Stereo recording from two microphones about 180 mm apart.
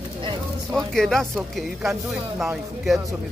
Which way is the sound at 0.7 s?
Centre (ahead or behind).